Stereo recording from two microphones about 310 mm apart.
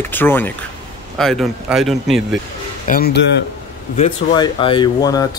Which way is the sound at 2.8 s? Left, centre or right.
Left.